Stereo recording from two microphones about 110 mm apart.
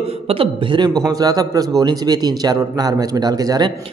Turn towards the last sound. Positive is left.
turn(degrees=-35)  # may be behind; listen again after turning